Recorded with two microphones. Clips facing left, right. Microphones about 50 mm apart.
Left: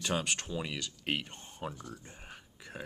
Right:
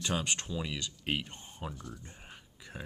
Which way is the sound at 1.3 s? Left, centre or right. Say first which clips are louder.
Even; centre.